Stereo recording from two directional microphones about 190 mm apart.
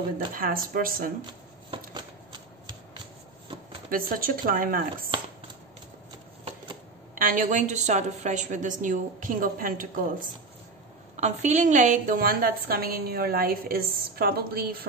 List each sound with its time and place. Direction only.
0.3 s a woman's voice: 45° right (ahead or behind)
1.2 s shuffling cards: 25° right (ahead or behind)
3.9 s a woman's voice: 50° right (ahead or behind)
7.2 s a woman's voice: 45° right (ahead or behind)